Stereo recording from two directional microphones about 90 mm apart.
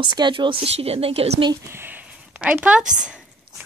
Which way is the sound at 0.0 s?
60° right (ahead or behind).